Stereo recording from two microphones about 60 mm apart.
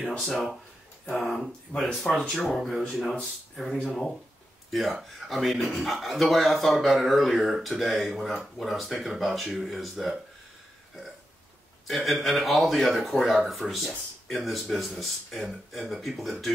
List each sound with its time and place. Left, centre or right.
0.2 s a man's voice: centre
1.7 s speech: centre
2.3 s a man's voice: centre
11.9 s a man's voice: centre